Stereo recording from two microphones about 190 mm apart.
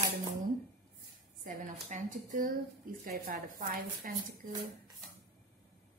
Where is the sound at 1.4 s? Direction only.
45° right (ahead or behind).